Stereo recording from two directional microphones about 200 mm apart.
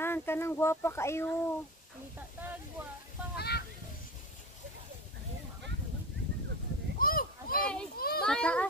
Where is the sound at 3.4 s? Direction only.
55° left (ahead or behind).